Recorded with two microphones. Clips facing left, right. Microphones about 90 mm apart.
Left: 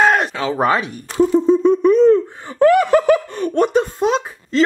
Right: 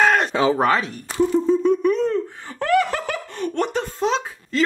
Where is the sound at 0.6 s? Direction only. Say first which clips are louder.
Left 2 dB; 10° left (ahead or behind).